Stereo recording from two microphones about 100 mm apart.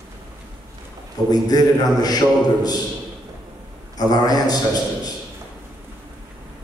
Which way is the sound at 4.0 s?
40° left (ahead or behind).